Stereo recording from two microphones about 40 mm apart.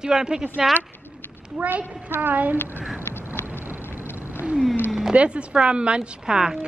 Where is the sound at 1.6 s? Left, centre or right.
Centre.